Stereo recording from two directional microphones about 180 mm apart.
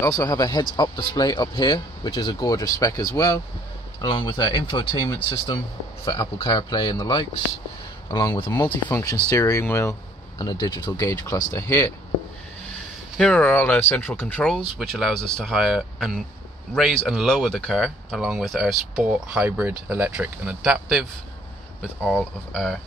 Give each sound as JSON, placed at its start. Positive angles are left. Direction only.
{"t": 0.0, "sound": "speech", "side_deg": 20}
{"t": 13.2, "sound": "speech", "side_deg": 5}
{"t": 22.0, "sound": "speech", "side_deg": 5}